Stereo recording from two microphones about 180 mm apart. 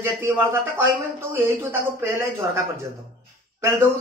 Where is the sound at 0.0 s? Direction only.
15° right (ahead or behind).